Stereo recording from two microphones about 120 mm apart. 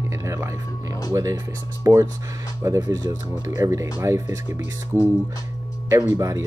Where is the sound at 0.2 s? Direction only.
25° right (ahead or behind).